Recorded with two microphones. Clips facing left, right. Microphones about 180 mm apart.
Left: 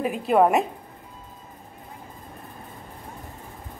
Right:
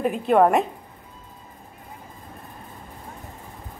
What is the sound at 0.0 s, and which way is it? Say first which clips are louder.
Speech: right 2 dB; centre (ahead or behind).